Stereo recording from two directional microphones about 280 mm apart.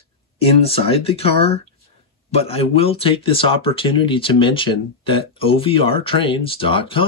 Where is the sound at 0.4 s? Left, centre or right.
Left.